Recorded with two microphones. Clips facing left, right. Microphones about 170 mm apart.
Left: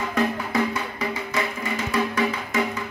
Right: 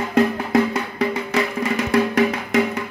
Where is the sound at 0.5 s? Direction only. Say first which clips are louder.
Right 6 dB; 65° right (ahead or behind).